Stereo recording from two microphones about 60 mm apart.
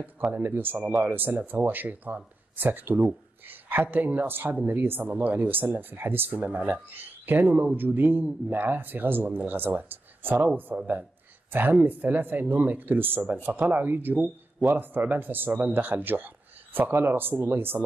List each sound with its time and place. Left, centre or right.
0.3 s speech: right